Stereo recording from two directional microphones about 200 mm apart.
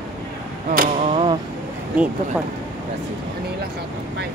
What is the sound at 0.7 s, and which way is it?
Arrow, 45° right (ahead or behind).